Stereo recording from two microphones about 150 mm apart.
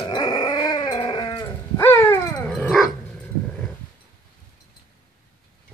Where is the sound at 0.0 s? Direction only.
30° left (ahead or behind).